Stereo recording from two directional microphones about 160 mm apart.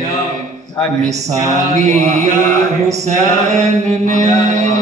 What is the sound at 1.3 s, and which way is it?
Mantra, 20° right (ahead or behind).